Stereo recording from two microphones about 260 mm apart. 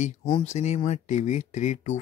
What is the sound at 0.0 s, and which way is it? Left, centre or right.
Speech, left.